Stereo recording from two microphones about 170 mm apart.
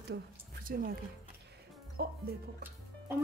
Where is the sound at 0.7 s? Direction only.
60° right (ahead or behind).